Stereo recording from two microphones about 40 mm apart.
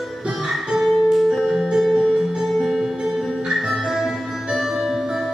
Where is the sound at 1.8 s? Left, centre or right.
Centre.